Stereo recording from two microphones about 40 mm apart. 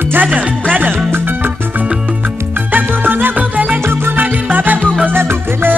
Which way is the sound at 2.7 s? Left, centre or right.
Right.